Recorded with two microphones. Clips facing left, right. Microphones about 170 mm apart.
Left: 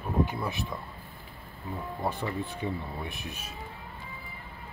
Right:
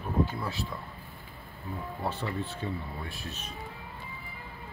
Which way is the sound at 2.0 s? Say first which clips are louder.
Left 2 dB; 15° left (ahead or behind).